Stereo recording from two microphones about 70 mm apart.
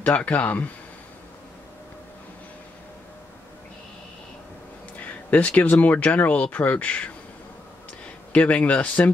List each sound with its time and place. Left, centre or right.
0.0 s speech: left
5.0 s a sound: left
5.6 s speech: left
8.3 s speech: centre